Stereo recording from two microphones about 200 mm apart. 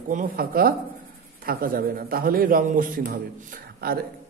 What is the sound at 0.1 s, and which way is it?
A man's voice, 45° right (ahead or behind).